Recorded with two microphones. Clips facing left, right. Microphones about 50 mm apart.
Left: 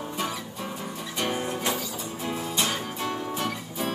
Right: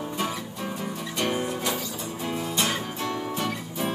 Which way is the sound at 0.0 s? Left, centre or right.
Centre.